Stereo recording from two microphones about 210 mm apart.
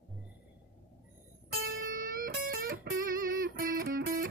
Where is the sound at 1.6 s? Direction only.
40° right (ahead or behind).